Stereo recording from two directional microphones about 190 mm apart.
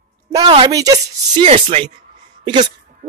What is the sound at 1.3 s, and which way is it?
Speech, 30° right (ahead or behind).